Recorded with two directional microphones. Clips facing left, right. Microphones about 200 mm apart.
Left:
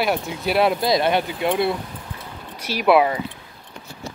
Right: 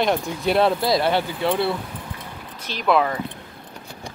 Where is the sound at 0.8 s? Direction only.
20° left (ahead or behind).